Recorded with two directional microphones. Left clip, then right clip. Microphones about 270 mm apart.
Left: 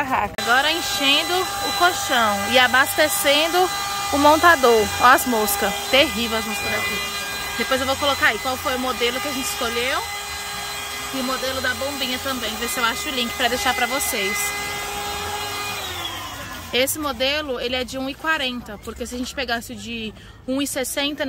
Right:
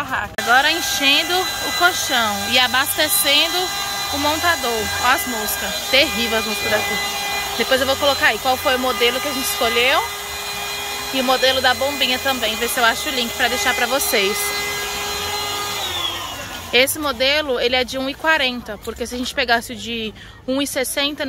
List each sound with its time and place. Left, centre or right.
0.1 s speech: centre
5.9 s speech: centre
7.7 s speech: centre
11.2 s speech: centre
16.7 s speech: centre